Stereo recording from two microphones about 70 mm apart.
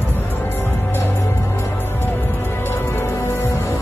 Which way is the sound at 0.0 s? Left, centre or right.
Left.